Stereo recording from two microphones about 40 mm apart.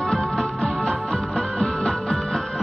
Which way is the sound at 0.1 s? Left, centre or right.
Centre.